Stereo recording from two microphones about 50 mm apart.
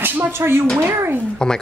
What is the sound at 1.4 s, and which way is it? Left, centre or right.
Speech, centre.